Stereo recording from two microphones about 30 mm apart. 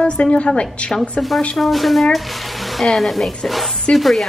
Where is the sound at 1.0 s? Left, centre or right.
Centre.